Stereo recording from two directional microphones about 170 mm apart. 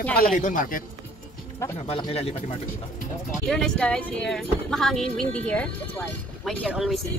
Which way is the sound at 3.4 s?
5° left (ahead or behind).